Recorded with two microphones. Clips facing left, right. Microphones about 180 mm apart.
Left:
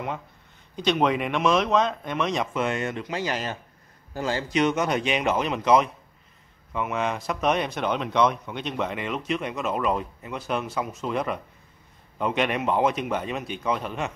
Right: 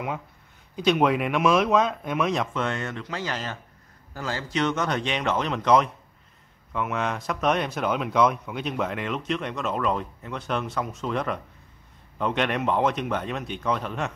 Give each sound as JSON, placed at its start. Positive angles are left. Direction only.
{"t": 0.7, "sound": "speech", "side_deg": -5}